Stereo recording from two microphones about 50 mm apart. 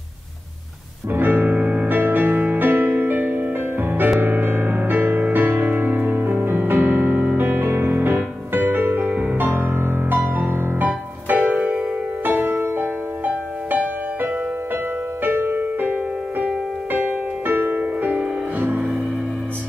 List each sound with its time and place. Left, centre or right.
1.1 s music: right
1.9 s music: right
10.9 s music: right
15.2 s music: right
15.8 s music: right